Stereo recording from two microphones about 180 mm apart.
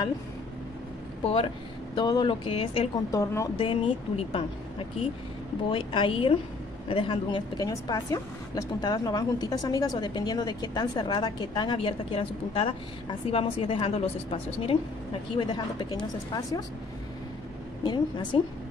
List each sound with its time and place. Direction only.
1.2 s a woman's voice: 30° left (ahead or behind)
3.1 s a woman's voice: 20° left (ahead or behind)
3.5 s a woman's voice: 30° left (ahead or behind)
17.8 s a woman's voice: 25° left (ahead or behind)